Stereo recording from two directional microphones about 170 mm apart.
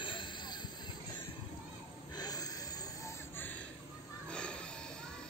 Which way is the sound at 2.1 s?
20° left (ahead or behind).